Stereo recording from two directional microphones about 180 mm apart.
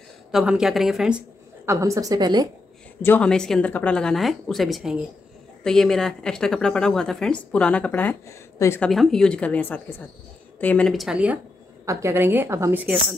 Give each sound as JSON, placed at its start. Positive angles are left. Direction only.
{"t": 0.3, "sound": "speech", "side_deg": -5}
{"t": 1.7, "sound": "a woman's voice", "side_deg": -15}
{"t": 3.0, "sound": "a woman's voice", "side_deg": 10}
{"t": 8.9, "sound": "a woman's voice", "side_deg": 0}
{"t": 11.8, "sound": "a woman's voice", "side_deg": -15}